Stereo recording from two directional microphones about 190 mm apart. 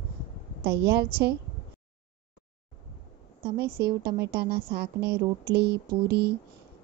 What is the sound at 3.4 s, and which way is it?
A woman's voice, 55° right (ahead or behind).